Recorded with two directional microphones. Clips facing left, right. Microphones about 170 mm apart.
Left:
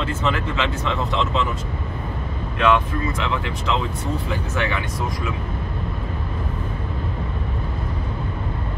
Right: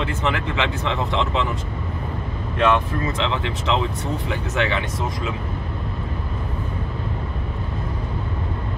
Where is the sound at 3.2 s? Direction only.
25° right (ahead or behind).